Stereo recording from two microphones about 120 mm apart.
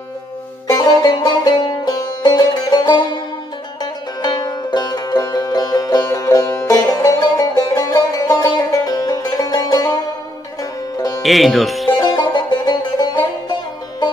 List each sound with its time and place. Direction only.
0.7 s music: 30° left (ahead or behind)
11.0 s music: 30° left (ahead or behind)
11.2 s speech: centre (ahead or behind)
12.0 s music: 35° left (ahead or behind)